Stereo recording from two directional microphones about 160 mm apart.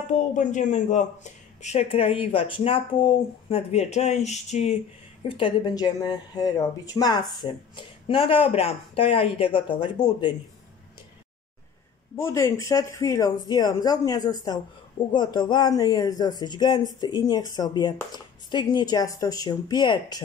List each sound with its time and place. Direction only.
0.0 s speech: 50° left (ahead or behind)
5.3 s speech: 30° left (ahead or behind)
12.2 s speech: 15° left (ahead or behind)